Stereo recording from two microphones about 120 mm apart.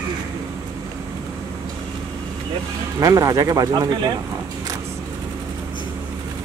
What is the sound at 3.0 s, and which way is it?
Speech, 30° right (ahead or behind).